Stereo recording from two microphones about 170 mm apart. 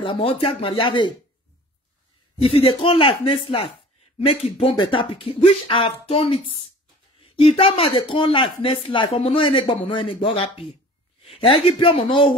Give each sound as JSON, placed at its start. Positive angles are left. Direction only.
{"t": 0.0, "sound": "speech", "side_deg": 30}
{"t": 2.4, "sound": "speech", "side_deg": 30}